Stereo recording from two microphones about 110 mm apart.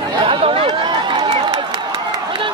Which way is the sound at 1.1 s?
60° right (ahead or behind).